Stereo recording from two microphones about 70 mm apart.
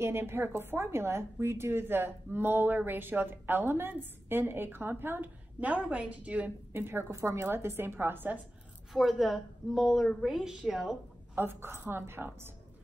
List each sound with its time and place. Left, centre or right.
0.0 s a woman's voice: right
6.7 s a woman's voice: right
7.1 s a woman's voice: right
8.9 s a woman's voice: centre
11.3 s a woman's voice: right